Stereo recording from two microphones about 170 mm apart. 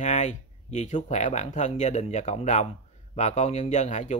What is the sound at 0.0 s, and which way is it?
Speech, 45° left (ahead or behind).